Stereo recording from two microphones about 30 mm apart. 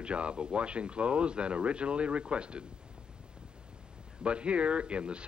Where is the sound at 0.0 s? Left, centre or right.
Right.